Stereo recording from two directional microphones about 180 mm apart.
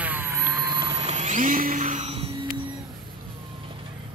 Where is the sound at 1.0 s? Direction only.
35° right (ahead or behind).